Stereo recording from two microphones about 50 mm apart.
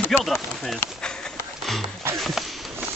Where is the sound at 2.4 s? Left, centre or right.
Centre.